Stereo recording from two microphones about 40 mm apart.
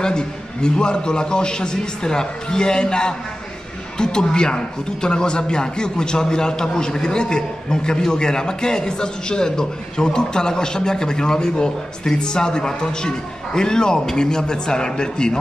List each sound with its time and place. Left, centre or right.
0.0 s a man's voice: centre